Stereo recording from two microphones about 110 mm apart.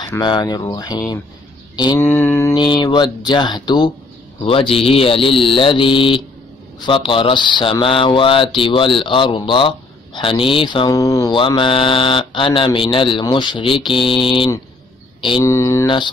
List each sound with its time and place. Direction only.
0.2 s speech: 45° left (ahead or behind)
2.0 s mantra: 25° left (ahead or behind)
2.5 s speech: 45° left (ahead or behind)
4.4 s speech: 55° left (ahead or behind)
10.9 s speech: 30° left (ahead or behind)
11.3 s speech: 50° left (ahead or behind)
15.4 s mantra: 30° left (ahead or behind)